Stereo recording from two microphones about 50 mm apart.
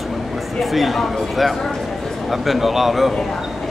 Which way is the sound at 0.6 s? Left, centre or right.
Centre.